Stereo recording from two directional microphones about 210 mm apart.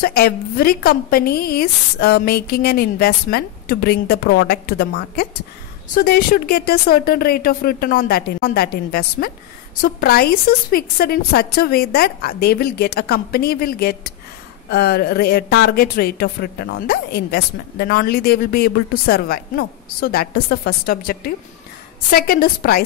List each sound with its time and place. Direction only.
0.0 s a woman's voice: 45° left (ahead or behind)